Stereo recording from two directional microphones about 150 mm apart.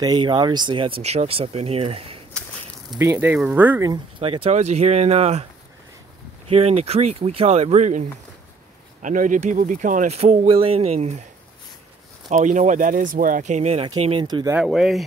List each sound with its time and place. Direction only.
0.0 s speech: 30° right (ahead or behind)
3.0 s speech: 15° right (ahead or behind)
4.2 s speech: 40° right (ahead or behind)
6.5 s speech: 45° right (ahead or behind)
9.0 s speech: 60° right (ahead or behind)
12.3 s speech: 55° right (ahead or behind)
14.2 s speech: 30° right (ahead or behind)
14.5 s speech: 5° right (ahead or behind)